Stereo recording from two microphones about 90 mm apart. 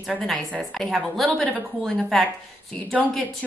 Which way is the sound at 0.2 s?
5° left (ahead or behind).